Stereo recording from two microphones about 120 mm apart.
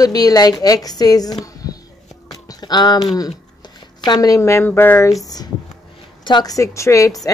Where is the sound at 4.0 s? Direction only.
35° left (ahead or behind); by 5.1 s 15° left (ahead or behind).